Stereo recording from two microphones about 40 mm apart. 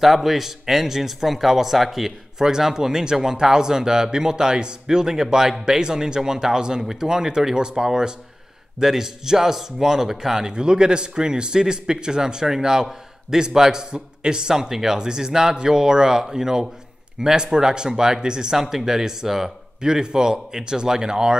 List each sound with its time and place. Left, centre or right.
0.0 s speech: centre
18.6 s speech: centre
19.8 s speech: centre